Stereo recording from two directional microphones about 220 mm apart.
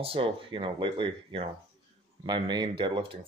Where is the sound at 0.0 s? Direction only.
25° right (ahead or behind).